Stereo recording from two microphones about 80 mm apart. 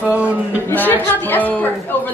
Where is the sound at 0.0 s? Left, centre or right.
Centre.